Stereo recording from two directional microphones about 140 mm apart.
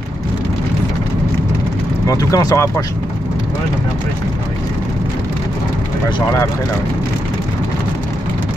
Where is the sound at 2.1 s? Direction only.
25° left (ahead or behind).